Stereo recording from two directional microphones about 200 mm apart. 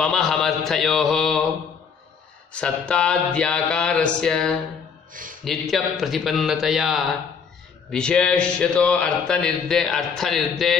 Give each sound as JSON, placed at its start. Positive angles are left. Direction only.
{"t": 0.0, "sound": "mantra", "side_deg": 5}
{"t": 2.5, "sound": "speech", "side_deg": 5}